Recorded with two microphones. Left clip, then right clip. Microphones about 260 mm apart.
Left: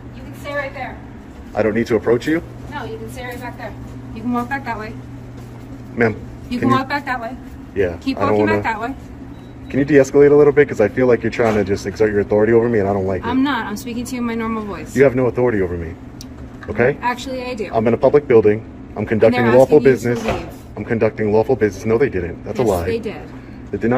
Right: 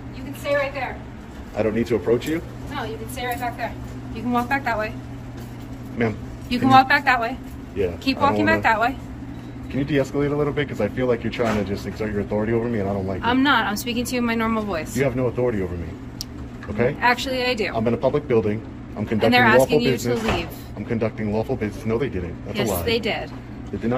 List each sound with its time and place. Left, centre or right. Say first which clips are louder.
1.6 s speech: left 5 dB; centre
4.3 s speech: even; centre
6.0 s speech: left 7 dB; centre
6.5 s speech: right 3 dB; centre
9.7 s speech: left 9 dB; centre
13.2 s speech: right 1 dB; centre
15.0 s speech: left 9 dB; centre
17.0 s speech: right 2 dB; centre
17.7 s speech: left 8 dB; centre
19.3 s speech: right 4 dB; centre
19.8 s speech: left 7 dB; centre
22.6 s speech: left 4 dB; centre